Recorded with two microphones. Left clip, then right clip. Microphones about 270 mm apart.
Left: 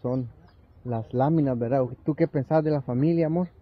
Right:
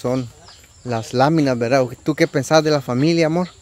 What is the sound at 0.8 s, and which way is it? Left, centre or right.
A man's voice, centre.